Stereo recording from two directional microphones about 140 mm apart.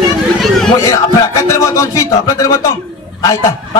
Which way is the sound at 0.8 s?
20° left (ahead or behind).